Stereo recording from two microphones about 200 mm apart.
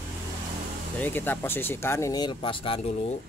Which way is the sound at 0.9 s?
10° left (ahead or behind).